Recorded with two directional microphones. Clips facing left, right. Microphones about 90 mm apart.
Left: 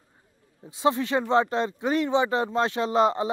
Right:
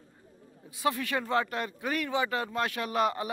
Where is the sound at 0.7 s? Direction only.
25° left (ahead or behind).